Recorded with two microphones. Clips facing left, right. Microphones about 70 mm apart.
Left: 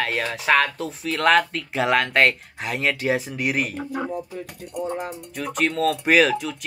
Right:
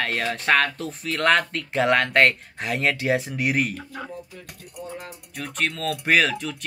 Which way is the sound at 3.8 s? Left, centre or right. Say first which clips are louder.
Left 8 dB; left.